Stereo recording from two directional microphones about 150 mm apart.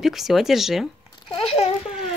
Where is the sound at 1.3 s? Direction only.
40° left (ahead or behind).